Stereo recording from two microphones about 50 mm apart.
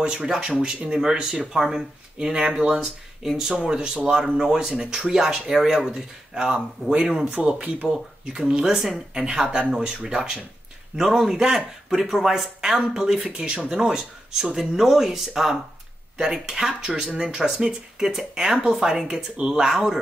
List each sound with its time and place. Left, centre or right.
0.0 s speech: right
13.5 s speech: centre
13.9 s speech: centre